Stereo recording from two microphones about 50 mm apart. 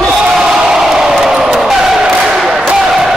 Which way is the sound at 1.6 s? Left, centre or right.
Centre.